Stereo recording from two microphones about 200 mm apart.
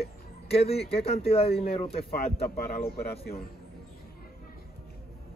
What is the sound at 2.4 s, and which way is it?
Speech, 50° left (ahead or behind).